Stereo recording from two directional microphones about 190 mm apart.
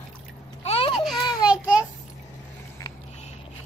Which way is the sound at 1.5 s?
5° right (ahead or behind).